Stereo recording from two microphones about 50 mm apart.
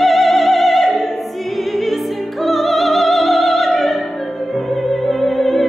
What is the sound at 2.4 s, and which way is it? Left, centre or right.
Opera, centre.